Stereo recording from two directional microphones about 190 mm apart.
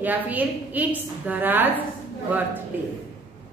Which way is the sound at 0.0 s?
10° right (ahead or behind).